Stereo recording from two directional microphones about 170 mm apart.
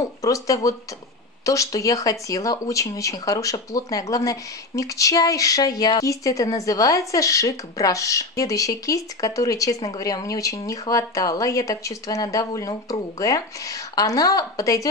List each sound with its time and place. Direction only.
0.0 s speech: 20° left (ahead or behind)